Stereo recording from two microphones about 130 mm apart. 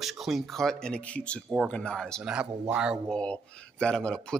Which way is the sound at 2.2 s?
5° right (ahead or behind).